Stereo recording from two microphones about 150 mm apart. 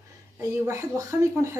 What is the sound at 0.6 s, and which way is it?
Speech, 20° right (ahead or behind).